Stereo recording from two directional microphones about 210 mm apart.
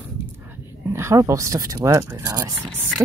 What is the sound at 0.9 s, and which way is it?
Speech, 15° right (ahead or behind).